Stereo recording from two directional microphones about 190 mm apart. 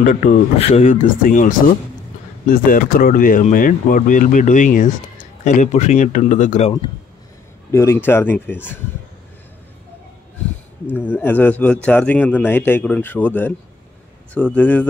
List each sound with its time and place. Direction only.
0.0 s speech: 45° left (ahead or behind)
0.6 s speech: 35° left (ahead or behind)
7.7 s speech: 15° left (ahead or behind)
10.9 s speech: 10° left (ahead or behind)